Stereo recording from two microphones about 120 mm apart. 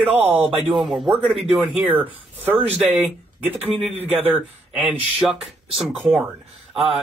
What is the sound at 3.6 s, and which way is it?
Speech, 60° right (ahead or behind).